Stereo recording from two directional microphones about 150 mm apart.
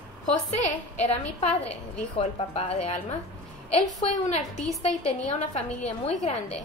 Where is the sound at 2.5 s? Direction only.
40° left (ahead or behind).